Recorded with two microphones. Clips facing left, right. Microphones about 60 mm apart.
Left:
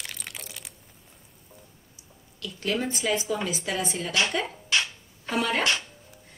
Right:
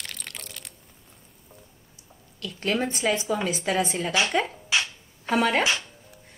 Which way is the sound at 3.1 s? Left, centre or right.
Right.